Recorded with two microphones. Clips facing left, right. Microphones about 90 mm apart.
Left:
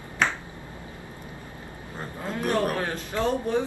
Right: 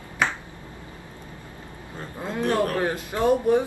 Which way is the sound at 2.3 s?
20° right (ahead or behind).